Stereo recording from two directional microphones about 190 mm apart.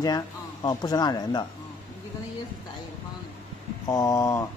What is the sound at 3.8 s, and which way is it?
Speech, 20° left (ahead or behind).